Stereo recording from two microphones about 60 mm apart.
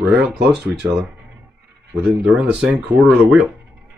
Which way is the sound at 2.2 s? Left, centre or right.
Centre.